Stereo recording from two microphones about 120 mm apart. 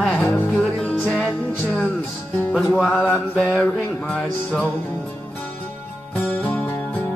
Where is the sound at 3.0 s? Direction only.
15° left (ahead or behind).